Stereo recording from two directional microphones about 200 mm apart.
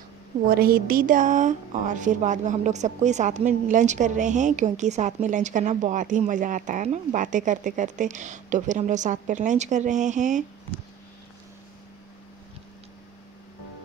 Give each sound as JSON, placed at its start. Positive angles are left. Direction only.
{"t": 0.5, "sound": "a woman's voice", "side_deg": -50}